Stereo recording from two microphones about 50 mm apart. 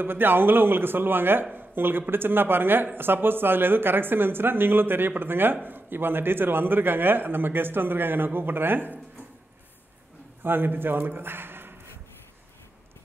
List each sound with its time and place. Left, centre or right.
0.0 s speech: right
10.4 s speech: right